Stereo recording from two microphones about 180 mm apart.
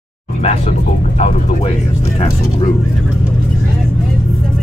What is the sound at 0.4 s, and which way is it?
Speech, 35° left (ahead or behind).